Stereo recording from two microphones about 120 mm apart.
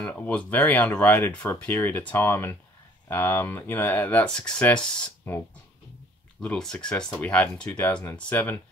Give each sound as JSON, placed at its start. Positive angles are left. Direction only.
{"t": 0.0, "sound": "speech", "side_deg": 10}
{"t": 6.4, "sound": "speech", "side_deg": 10}